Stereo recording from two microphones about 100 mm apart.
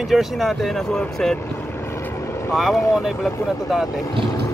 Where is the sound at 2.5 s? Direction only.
Centre (ahead or behind).